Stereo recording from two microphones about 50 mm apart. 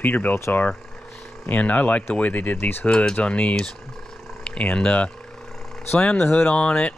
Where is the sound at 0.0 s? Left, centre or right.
Left.